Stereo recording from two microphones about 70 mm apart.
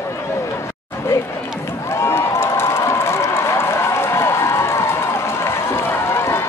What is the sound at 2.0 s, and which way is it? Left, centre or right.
Run, left.